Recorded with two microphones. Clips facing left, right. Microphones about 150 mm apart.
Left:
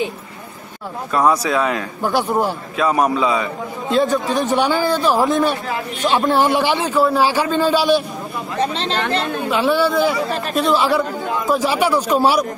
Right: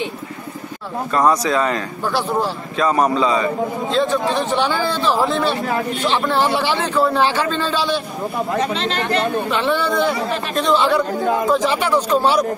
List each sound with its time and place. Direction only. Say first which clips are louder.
1.1 s a man's voice: even; 10° left (ahead or behind)
8.5 s speech: left 4 dB; 30° left (ahead or behind)
9.5 s a man's voice: left 2 dB; 5° left (ahead or behind)